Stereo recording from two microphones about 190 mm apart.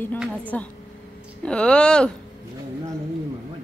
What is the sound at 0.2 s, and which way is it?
Speech, 5° left (ahead or behind).